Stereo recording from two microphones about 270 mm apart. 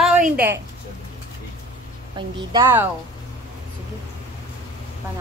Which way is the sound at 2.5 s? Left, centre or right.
Centre.